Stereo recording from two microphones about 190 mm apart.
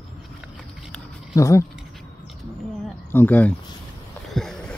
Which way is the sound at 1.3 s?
15° left (ahead or behind).